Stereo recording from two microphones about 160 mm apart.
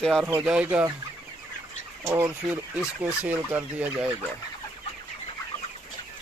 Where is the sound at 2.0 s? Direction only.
20° right (ahead or behind).